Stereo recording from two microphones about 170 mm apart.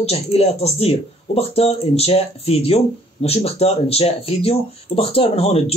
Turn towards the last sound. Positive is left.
turn(degrees=35)  # may be behind; listen again after turning